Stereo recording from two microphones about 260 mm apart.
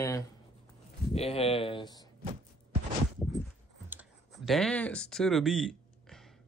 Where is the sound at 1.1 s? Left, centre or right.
Left.